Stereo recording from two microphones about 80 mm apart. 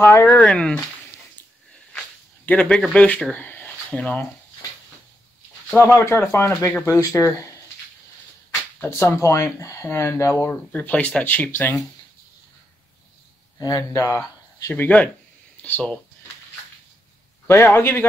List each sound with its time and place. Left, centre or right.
0.0 s a man's voice: left
0.4 s speech: centre
2.4 s speech: centre
3.3 s a sound: left
5.8 s speech: left
8.9 s a man's voice: left
13.6 s speech: left
14.7 s a man's voice: left
17.5 s a man's voice: left